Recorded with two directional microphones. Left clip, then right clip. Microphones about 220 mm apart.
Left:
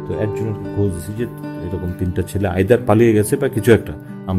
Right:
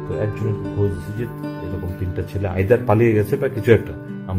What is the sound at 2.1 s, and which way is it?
Speech, 45° left (ahead or behind).